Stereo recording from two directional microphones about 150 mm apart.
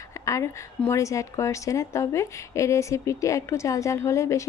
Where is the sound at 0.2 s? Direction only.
20° left (ahead or behind).